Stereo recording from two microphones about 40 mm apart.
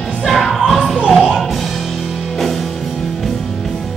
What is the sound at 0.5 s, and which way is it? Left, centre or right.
Music, centre.